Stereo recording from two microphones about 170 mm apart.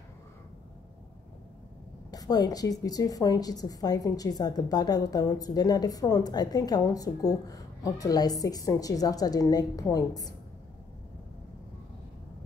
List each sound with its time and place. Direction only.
2.0 s a woman's voice: 20° left (ahead or behind)